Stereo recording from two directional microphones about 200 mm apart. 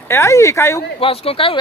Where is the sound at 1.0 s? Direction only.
30° left (ahead or behind).